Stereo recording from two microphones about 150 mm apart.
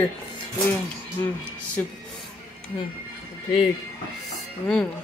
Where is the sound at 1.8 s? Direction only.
10° left (ahead or behind).